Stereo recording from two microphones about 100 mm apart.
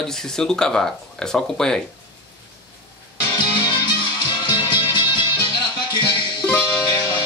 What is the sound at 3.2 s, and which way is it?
Music, 50° left (ahead or behind).